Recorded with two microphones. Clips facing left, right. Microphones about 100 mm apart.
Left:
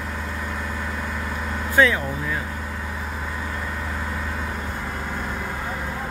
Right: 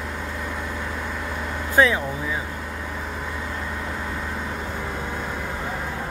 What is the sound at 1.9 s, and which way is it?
Speech, 10° right (ahead or behind).